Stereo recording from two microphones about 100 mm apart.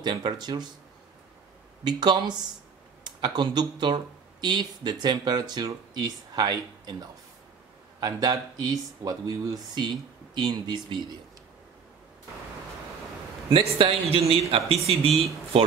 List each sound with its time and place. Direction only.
0.0 s speech: 50° right (ahead or behind)
1.9 s speech: 45° right (ahead or behind)
8.0 s speech: 40° right (ahead or behind)
13.5 s a man's voice: 65° right (ahead or behind)